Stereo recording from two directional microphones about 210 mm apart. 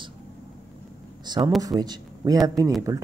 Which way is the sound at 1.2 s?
20° right (ahead or behind).